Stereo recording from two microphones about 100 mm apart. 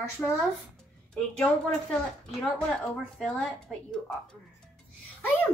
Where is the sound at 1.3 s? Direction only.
10° left (ahead or behind).